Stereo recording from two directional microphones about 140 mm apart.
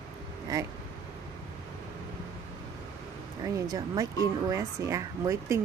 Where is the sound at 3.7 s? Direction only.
25° right (ahead or behind).